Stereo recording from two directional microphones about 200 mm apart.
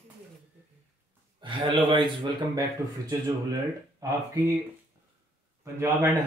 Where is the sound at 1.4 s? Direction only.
25° right (ahead or behind).